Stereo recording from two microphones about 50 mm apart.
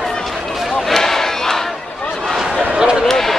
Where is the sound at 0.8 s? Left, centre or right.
Centre.